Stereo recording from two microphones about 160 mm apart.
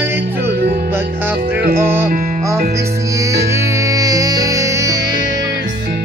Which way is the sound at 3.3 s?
20° right (ahead or behind).